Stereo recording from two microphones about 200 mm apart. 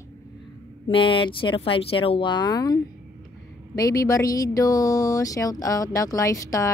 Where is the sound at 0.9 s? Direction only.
25° left (ahead or behind).